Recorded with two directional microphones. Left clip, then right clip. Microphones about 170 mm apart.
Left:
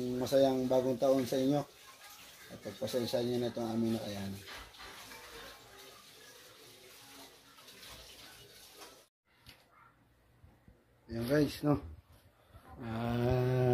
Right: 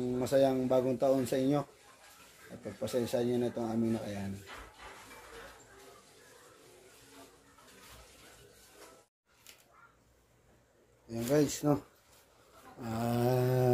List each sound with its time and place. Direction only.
0.2 s speech: 5° right (ahead or behind)
2.8 s speech: 5° right (ahead or behind)
11.1 s speech: 15° right (ahead or behind)
12.8 s speech: 15° right (ahead or behind)